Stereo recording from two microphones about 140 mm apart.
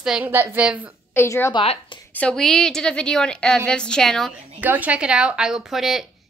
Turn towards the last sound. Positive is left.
turn(degrees=0)  # may be behind; listen again after turning